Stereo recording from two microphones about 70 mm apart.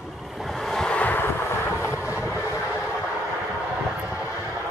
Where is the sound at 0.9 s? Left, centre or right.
Left.